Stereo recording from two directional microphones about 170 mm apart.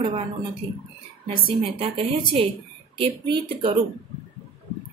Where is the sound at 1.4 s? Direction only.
30° right (ahead or behind).